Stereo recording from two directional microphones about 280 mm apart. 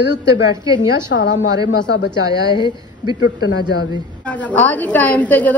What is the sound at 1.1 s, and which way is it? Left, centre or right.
Speech, left.